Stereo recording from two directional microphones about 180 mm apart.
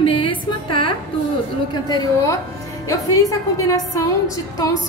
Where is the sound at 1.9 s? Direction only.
25° left (ahead or behind).